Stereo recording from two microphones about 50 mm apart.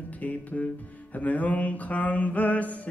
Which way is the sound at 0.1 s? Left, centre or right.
Left.